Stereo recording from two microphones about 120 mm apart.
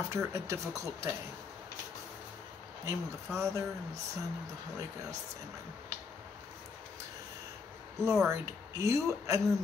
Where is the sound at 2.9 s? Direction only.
25° right (ahead or behind).